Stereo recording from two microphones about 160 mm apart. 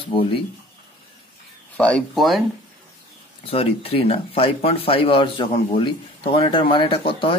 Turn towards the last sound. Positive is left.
turn(degrees=30)  # may be behind; listen again after turning